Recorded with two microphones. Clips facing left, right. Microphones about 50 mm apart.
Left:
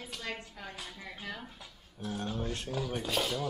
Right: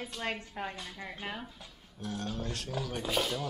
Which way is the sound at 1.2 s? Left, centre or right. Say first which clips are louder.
Right 2 dB; right.